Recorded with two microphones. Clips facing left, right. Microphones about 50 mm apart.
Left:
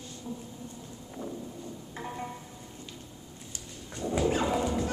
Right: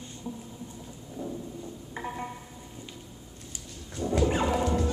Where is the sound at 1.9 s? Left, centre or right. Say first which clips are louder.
Right 3 dB; centre.